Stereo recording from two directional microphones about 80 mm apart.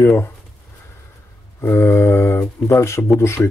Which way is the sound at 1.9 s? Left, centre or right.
Left.